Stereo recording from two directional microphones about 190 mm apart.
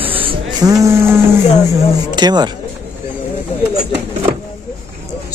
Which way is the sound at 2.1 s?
20° right (ahead or behind).